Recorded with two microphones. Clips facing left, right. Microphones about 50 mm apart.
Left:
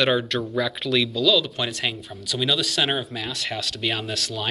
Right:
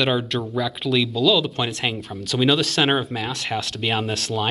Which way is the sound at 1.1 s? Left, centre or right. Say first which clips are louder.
Right 2 dB; right.